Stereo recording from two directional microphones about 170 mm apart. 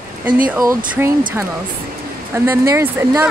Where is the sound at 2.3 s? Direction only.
15° right (ahead or behind).